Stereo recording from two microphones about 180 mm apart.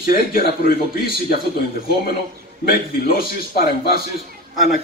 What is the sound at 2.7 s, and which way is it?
A man's voice, 55° left (ahead or behind).